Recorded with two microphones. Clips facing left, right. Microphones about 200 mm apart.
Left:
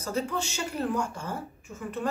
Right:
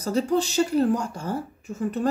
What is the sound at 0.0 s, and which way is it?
A woman's voice, 35° right (ahead or behind).